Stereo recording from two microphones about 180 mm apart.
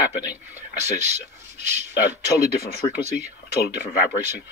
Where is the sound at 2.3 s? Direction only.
55° left (ahead or behind).